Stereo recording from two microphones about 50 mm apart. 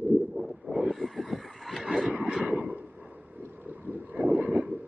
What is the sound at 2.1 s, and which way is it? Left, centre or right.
Vehicle, centre.